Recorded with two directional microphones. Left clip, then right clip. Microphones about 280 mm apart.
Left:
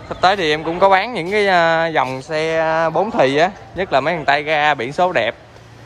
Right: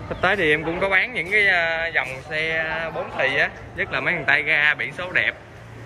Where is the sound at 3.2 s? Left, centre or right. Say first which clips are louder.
Left 6 dB; centre.